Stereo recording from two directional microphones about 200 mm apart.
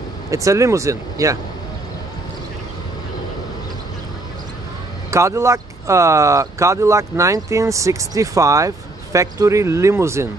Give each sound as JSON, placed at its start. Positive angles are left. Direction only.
{"t": 0.3, "sound": "speech", "side_deg": -15}
{"t": 5.1, "sound": "speech", "side_deg": -15}